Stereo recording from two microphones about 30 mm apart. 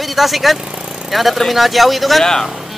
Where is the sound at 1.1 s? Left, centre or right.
Centre.